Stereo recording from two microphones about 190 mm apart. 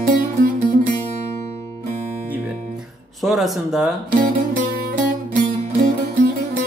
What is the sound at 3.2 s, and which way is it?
Speech, centre (ahead or behind).